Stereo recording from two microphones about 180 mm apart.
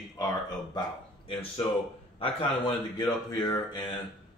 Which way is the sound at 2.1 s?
30° left (ahead or behind).